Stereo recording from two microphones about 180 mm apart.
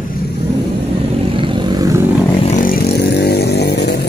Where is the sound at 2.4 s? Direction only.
45° left (ahead or behind); by 4.1 s 65° left (ahead or behind).